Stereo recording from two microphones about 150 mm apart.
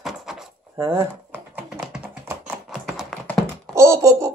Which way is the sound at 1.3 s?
10° right (ahead or behind).